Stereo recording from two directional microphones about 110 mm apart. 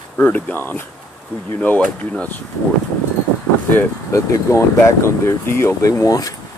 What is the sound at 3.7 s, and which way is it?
Speech, 25° left (ahead or behind).